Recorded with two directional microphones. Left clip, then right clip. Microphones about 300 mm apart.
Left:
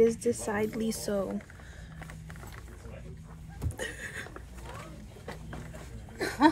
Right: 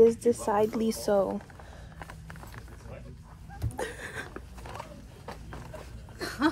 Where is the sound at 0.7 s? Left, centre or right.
Centre.